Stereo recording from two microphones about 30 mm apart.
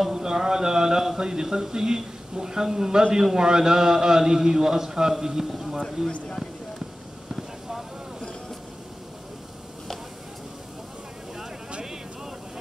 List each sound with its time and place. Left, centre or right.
0.1 s a man's voice: right